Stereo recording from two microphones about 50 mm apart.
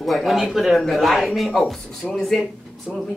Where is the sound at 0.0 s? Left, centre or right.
Centre.